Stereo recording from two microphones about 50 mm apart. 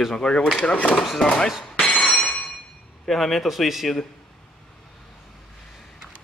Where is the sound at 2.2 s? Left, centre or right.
Left.